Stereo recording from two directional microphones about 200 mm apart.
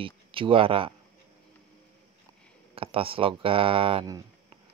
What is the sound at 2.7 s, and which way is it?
Speech, 25° right (ahead or behind).